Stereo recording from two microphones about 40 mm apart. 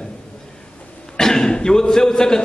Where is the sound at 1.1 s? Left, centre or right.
Centre.